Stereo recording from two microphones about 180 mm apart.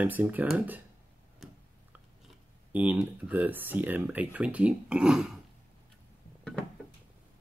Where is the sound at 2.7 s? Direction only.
10° right (ahead or behind).